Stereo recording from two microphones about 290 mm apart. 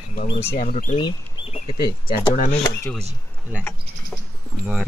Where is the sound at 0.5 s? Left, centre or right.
Left.